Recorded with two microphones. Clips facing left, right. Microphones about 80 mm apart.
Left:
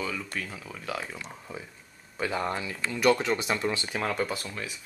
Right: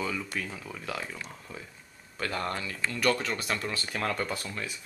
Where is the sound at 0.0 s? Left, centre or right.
Centre.